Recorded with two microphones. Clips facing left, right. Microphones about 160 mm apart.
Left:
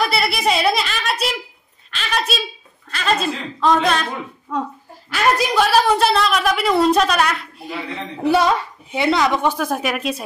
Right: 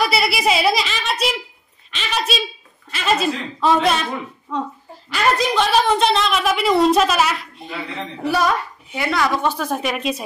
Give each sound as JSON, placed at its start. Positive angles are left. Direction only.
{"t": 0.0, "sound": "a woman's voice", "side_deg": 0}
{"t": 2.0, "sound": "a sound", "side_deg": 0}
{"t": 2.9, "sound": "a woman's voice", "side_deg": -5}
{"t": 8.2, "sound": "a woman's voice", "side_deg": 25}